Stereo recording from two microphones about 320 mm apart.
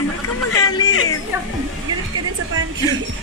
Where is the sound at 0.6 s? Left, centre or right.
Centre.